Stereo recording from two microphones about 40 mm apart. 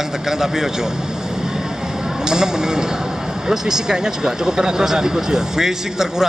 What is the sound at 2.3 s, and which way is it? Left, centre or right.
Speech, centre.